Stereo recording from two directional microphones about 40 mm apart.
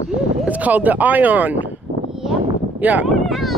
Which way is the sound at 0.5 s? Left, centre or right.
Right.